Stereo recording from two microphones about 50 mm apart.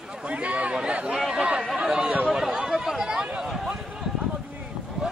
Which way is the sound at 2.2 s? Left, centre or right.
Centre.